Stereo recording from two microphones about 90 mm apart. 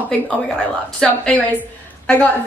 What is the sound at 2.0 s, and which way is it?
Speech, 15° left (ahead or behind).